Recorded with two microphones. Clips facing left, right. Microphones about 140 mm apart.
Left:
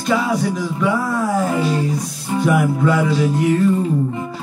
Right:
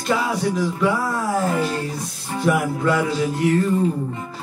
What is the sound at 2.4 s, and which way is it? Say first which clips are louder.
Music: left 2 dB; centre (ahead or behind).